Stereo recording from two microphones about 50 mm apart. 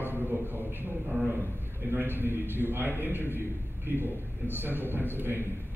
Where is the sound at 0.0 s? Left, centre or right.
Right.